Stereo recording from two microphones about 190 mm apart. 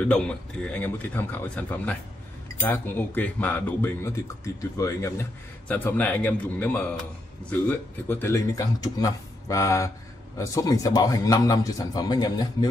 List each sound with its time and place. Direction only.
0.0 s a man's voice: 5° left (ahead or behind)